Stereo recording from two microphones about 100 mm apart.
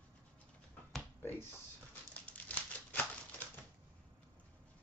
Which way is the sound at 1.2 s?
20° left (ahead or behind).